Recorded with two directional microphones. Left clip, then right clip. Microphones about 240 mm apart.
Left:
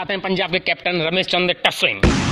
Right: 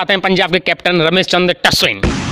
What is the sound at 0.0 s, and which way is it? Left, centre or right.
A man's voice, right.